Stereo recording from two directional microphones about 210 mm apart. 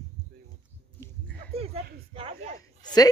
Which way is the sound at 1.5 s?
30° right (ahead or behind).